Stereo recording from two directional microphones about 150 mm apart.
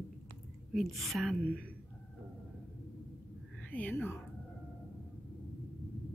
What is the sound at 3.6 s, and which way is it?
Speech, 10° left (ahead or behind).